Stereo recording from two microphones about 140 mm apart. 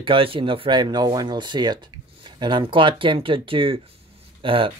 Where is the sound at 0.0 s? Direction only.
40° right (ahead or behind).